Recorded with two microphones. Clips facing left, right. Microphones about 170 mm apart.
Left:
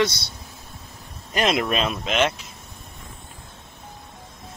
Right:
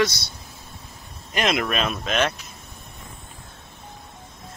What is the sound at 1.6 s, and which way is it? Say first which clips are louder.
Speech: left 1 dB; 25° left (ahead or behind).